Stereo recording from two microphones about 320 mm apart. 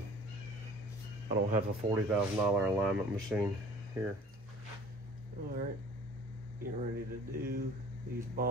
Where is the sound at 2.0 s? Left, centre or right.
Centre.